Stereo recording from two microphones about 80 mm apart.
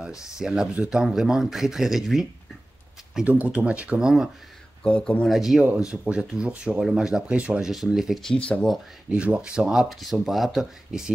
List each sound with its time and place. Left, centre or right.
0.2 s speech: centre
3.3 s speech: centre
4.8 s speech: centre
5.3 s speech: centre
8.2 s speech: centre
9.1 s speech: centre